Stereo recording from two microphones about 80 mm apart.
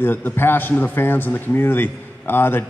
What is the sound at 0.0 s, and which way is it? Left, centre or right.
A man's voice, left.